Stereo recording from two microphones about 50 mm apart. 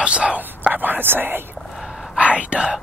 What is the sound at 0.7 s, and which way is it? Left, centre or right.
Whispering, right.